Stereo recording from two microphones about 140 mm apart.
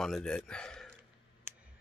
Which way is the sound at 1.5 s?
15° right (ahead or behind).